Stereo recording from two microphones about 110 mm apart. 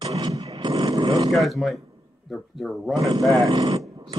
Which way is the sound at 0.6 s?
50° right (ahead or behind).